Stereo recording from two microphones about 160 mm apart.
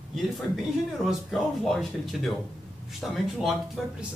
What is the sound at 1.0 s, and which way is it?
Speech, centre (ahead or behind).